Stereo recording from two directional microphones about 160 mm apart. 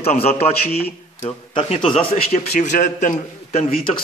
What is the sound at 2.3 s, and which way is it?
A man's voice, 55° left (ahead or behind).